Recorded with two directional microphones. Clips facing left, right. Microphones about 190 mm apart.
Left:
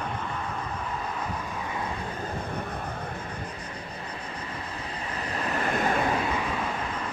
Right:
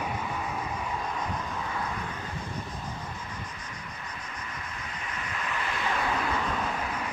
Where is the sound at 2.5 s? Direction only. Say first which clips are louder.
Left 4 dB; 60° left (ahead or behind).